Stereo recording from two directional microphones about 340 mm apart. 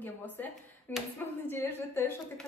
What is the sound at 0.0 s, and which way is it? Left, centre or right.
A woman's voice, centre.